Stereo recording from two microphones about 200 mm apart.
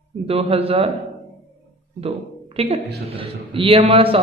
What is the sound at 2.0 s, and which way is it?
A woman's voice, 30° right (ahead or behind).